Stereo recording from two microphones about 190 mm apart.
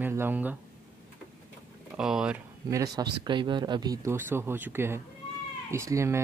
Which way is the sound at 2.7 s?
20° right (ahead or behind).